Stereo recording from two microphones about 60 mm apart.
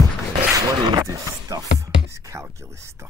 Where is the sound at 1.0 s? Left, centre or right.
Right.